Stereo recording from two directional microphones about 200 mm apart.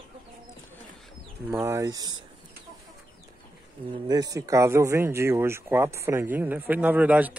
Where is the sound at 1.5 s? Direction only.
15° right (ahead or behind).